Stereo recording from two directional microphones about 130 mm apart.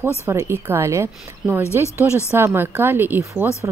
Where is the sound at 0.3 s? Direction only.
20° right (ahead or behind).